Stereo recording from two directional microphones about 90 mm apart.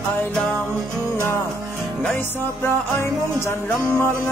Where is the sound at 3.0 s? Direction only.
30° left (ahead or behind).